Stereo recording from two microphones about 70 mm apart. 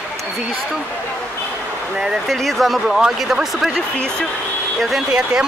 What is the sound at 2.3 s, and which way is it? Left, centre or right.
Speech, centre.